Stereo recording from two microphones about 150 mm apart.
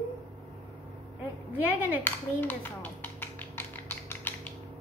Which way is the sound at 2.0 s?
15° left (ahead or behind).